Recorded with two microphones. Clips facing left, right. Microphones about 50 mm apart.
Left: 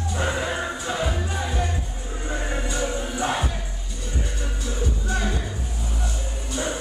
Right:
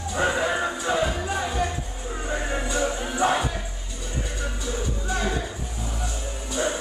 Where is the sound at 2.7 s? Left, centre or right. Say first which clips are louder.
Right 3 dB; centre.